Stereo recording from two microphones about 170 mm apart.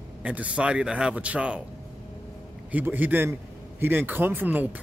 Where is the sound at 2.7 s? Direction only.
10° right (ahead or behind).